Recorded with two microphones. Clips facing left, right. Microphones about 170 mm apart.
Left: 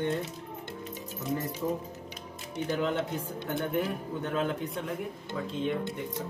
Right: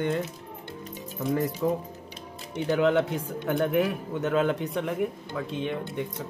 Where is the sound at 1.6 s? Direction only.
90° right; by 4.9 s 70° right (ahead or behind).